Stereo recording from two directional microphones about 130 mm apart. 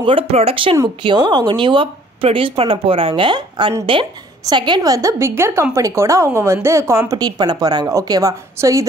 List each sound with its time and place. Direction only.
0.0 s speech: 45° right (ahead or behind)
1.0 s a woman's voice: 35° right (ahead or behind)